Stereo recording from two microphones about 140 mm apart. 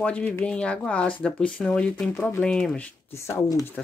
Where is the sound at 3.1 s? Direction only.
20° left (ahead or behind).